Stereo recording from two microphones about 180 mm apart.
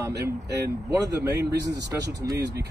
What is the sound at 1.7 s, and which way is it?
Speech, 65° right (ahead or behind).